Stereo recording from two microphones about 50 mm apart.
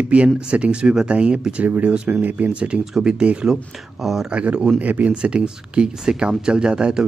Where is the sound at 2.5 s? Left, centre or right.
Right.